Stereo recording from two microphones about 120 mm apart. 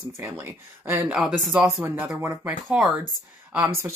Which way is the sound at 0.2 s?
20° right (ahead or behind).